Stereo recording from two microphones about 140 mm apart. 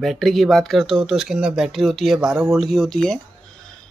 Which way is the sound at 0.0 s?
Centre (ahead or behind).